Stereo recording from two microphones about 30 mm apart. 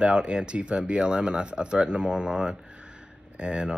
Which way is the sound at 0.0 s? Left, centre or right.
Right.